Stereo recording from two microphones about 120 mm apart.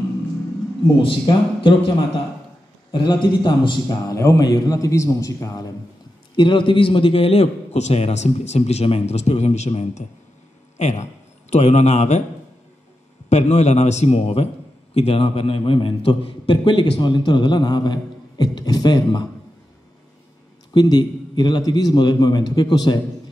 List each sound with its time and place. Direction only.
1.0 s a man's voice: 45° left (ahead or behind)
2.9 s a man's voice: 40° left (ahead or behind)
4.2 s a man's voice: 30° left (ahead or behind)
6.3 s a man's voice: 40° left (ahead or behind); by 12.2 s 70° left (ahead or behind)
13.3 s a man's voice: 70° left (ahead or behind); by 19.2 s 35° left (ahead or behind)
20.7 s a man's voice: 35° left (ahead or behind)